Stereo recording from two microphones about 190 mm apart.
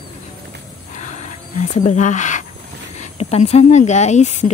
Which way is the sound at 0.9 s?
40° left (ahead or behind).